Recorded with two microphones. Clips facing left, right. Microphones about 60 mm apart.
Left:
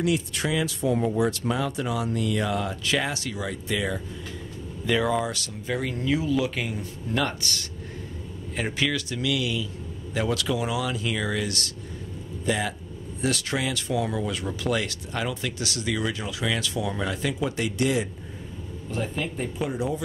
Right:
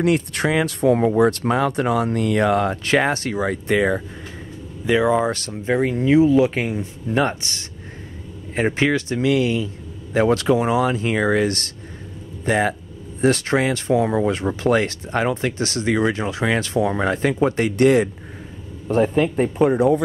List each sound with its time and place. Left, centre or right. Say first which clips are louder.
0.0 s speech: right 6 dB; right
4.8 s speech: right 6 dB; right
5.2 s speech: right 8 dB; right